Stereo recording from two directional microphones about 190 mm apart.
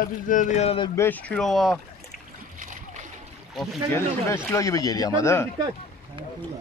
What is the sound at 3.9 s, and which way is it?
Speech, 15° left (ahead or behind).